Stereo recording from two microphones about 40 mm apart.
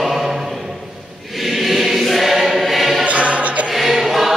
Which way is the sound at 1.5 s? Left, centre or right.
Centre.